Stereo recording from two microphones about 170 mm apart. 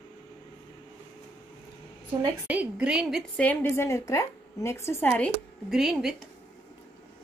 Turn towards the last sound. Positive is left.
turn(degrees=0)  # may be behind; listen again after turning